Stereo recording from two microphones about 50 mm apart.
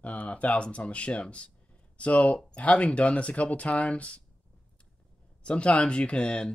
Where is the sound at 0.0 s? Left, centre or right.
Left.